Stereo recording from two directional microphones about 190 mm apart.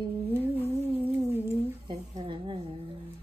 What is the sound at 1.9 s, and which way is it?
Speech, 25° right (ahead or behind).